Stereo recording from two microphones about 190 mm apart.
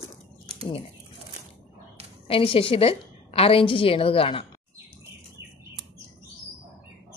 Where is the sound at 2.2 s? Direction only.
30° left (ahead or behind).